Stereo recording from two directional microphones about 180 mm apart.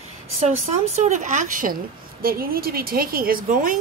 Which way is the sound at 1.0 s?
45° right (ahead or behind).